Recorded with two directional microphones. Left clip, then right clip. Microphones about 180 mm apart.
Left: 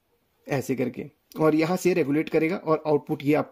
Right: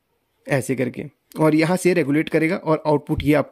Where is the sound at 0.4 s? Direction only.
35° right (ahead or behind).